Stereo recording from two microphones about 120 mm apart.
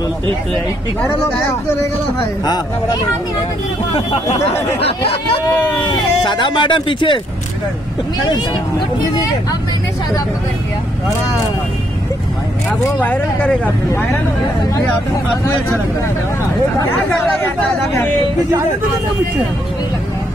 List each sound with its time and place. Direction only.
2.4 s speech: 35° left (ahead or behind)
4.4 s speech: 25° left (ahead or behind)
4.8 s speech: 55° left (ahead or behind)
5.6 s speech: 40° left (ahead or behind)
8.3 s speech: 35° left (ahead or behind)
13.0 s speech: 15° left (ahead or behind)